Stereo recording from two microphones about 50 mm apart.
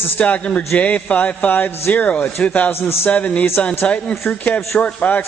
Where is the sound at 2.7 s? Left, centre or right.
Left.